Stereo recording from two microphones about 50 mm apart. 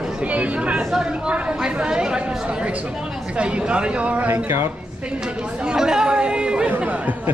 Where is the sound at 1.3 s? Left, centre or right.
Right.